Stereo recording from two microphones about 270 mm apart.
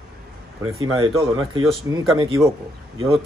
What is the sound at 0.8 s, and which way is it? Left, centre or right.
Speech, centre.